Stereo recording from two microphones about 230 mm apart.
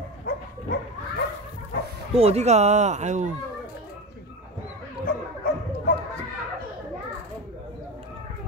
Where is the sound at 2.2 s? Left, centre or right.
Right.